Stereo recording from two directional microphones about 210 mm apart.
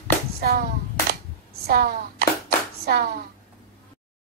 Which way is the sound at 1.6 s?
50° right (ahead or behind).